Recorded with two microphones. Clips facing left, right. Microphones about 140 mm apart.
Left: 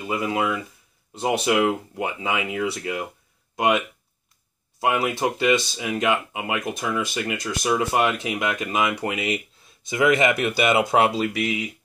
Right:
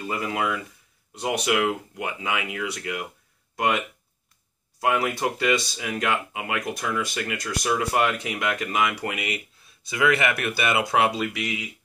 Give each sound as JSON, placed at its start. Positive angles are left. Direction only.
{"t": 0.0, "sound": "speech", "side_deg": 20}
{"t": 3.5, "sound": "speech", "side_deg": 20}